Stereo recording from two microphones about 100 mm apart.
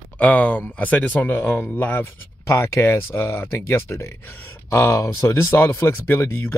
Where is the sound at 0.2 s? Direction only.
15° left (ahead or behind).